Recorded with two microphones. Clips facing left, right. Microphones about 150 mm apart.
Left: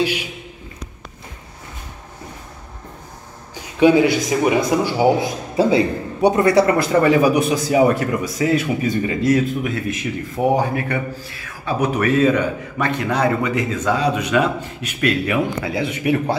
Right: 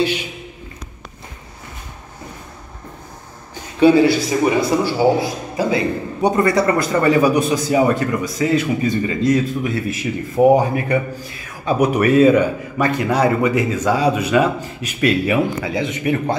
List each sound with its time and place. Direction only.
3.8 s speech: 15° left (ahead or behind)
5.6 s a man's voice: 30° left (ahead or behind)
6.2 s speech: 10° left (ahead or behind)
11.8 s speech: 10° right (ahead or behind); by 16.3 s 5° left (ahead or behind)